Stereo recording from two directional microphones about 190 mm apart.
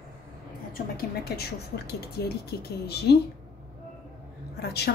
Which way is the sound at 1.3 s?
55° left (ahead or behind).